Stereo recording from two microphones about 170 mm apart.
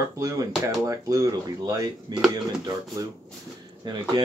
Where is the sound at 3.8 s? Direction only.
25° right (ahead or behind).